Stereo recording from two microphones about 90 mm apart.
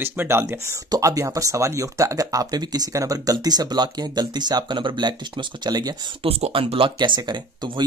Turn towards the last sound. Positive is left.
turn(degrees=-55)  # may be behind; listen again after turning